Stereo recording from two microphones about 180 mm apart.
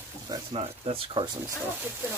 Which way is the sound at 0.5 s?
35° right (ahead or behind).